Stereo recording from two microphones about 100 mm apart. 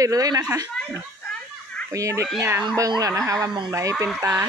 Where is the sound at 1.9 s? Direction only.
30° right (ahead or behind).